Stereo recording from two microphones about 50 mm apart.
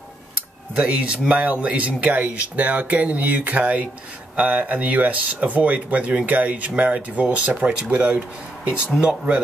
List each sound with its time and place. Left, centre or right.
0.7 s speech: right